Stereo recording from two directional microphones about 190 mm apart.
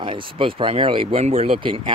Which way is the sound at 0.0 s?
25° right (ahead or behind).